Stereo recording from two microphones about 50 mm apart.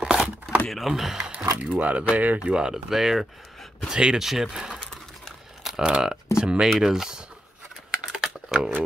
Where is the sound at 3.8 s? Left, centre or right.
Centre.